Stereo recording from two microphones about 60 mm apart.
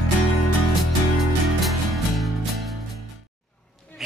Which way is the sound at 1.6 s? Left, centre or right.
Centre.